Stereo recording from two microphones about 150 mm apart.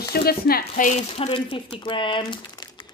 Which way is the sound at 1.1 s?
40° left (ahead or behind).